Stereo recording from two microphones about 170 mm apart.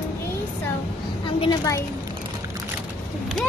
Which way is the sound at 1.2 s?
30° left (ahead or behind).